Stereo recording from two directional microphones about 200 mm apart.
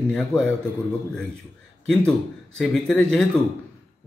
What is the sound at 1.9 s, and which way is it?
A man's voice, 5° left (ahead or behind).